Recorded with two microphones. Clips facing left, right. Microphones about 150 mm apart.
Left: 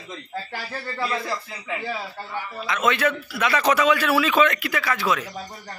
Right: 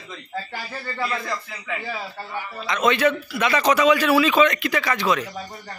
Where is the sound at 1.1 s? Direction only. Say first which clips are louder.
Left 1 dB; 5° left (ahead or behind).